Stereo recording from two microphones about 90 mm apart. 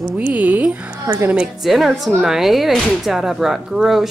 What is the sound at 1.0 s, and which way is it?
Speech, 40° right (ahead or behind).